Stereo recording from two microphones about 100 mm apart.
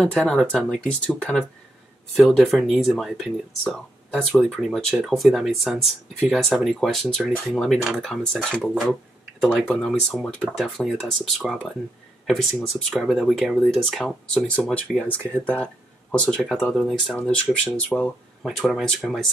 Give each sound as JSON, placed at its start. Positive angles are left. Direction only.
{"t": 0.0, "sound": "speech", "side_deg": 10}
{"t": 2.1, "sound": "speech", "side_deg": 0}
{"t": 16.3, "sound": "speech", "side_deg": 0}
{"t": 18.4, "sound": "speech", "side_deg": -5}